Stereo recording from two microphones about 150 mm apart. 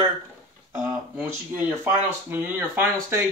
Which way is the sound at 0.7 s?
15° right (ahead or behind).